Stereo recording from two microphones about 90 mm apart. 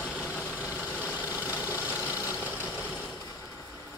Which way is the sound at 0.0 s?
15° right (ahead or behind).